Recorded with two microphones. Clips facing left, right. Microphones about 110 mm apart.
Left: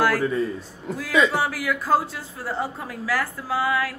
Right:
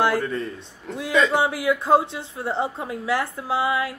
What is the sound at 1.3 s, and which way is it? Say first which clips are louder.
A woman's voice: right 4 dB; 20° right (ahead or behind).